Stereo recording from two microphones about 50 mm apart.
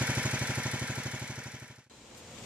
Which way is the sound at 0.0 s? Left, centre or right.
Right.